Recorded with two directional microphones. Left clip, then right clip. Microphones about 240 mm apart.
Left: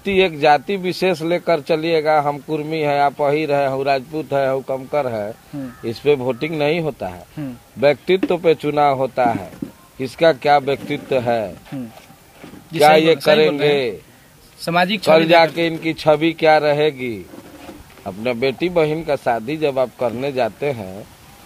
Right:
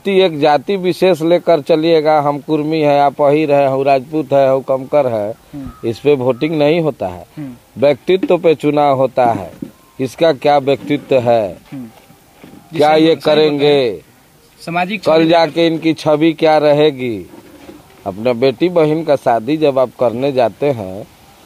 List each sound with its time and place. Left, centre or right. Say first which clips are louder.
0.0 s a man's voice: right 4 dB; right
12.7 s a man's voice: right 1 dB; right
14.6 s a man's voice: left 1 dB; centre
15.1 s a man's voice: right 2 dB; right